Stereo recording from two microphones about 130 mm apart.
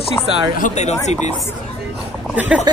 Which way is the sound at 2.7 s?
30° right (ahead or behind).